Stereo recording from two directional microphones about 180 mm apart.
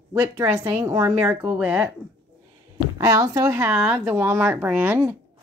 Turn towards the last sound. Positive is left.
turn(degrees=-10)  # may be behind; listen again after turning